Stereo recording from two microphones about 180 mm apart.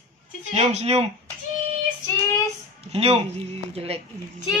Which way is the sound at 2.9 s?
35° right (ahead or behind).